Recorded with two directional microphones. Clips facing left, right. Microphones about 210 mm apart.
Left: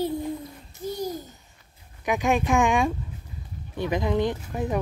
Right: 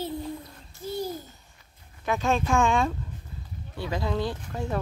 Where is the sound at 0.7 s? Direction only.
15° left (ahead or behind).